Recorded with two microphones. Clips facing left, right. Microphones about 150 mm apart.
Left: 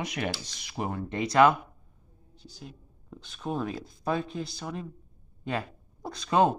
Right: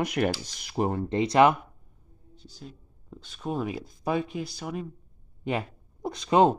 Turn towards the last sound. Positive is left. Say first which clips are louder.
# right 3 dB
turn(degrees=-20)  # may be behind; listen again after turning